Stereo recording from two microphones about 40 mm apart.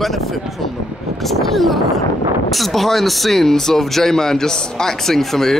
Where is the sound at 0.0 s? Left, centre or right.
Centre.